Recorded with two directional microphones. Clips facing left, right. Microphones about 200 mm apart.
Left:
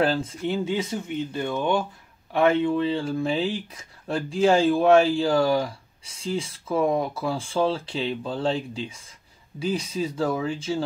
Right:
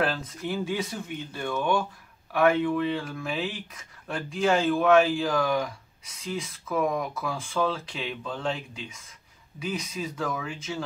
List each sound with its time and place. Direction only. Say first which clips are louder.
0.0 s speech: left 5 dB; 30° left (ahead or behind)